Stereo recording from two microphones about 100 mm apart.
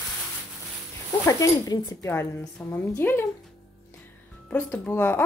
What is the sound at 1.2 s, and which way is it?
Speech, 35° left (ahead or behind).